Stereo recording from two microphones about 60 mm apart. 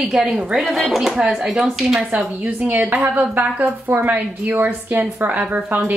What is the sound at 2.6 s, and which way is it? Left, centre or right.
A woman's voice, right.